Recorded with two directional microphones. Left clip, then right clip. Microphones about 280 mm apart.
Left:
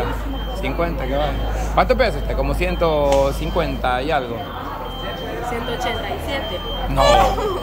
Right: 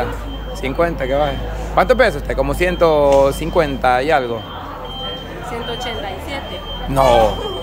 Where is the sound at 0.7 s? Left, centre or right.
Centre.